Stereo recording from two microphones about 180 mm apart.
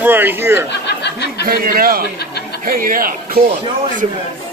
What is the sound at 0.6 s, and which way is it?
Speech, 75° left (ahead or behind).